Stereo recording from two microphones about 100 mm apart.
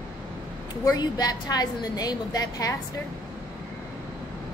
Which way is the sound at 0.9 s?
40° left (ahead or behind).